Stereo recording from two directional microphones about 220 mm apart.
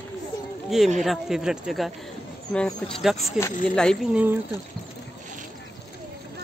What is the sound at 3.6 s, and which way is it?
Speech, 5° left (ahead or behind).